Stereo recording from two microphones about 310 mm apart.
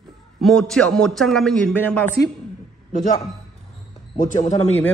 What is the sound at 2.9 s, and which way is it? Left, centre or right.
Speech, left.